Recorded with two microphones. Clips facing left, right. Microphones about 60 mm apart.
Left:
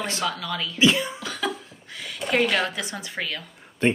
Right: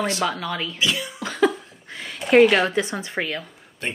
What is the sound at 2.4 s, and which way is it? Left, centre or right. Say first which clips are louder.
Speech: right 8 dB; centre.